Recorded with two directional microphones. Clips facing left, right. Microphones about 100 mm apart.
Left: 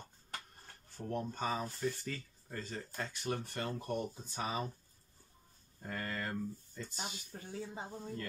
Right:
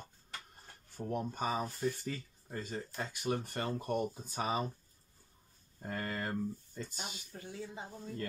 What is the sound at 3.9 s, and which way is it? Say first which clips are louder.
Speech: right 4 dB; 40° right (ahead or behind).